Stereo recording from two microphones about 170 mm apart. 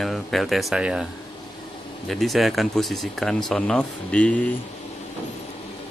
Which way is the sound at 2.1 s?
Centre (ahead or behind).